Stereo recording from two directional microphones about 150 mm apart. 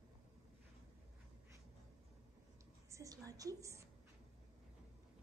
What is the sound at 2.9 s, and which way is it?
Speech, 20° right (ahead or behind).